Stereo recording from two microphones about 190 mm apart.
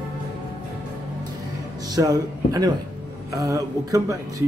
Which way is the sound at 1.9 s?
20° right (ahead or behind).